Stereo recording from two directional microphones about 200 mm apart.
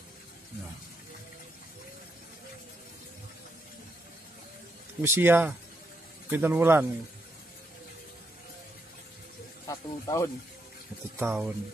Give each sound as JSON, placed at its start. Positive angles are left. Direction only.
{"t": 5.0, "sound": "speech", "side_deg": -10}
{"t": 9.7, "sound": "speech", "side_deg": 15}
{"t": 11.1, "sound": "speech", "side_deg": -10}